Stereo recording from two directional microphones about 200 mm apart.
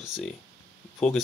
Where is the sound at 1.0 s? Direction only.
Centre (ahead or behind).